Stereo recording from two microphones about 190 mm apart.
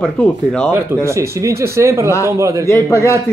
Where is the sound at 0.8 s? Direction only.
15° right (ahead or behind).